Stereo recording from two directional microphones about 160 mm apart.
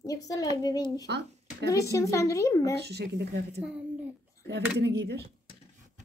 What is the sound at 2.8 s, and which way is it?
Speech, 90° right.